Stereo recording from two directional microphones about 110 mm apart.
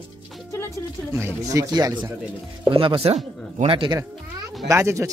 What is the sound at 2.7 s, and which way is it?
Speech, 55° right (ahead or behind).